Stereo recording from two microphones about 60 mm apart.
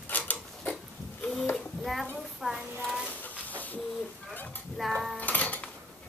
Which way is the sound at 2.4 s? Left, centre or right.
Centre.